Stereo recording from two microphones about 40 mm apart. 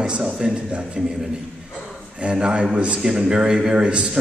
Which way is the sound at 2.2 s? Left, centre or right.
Right.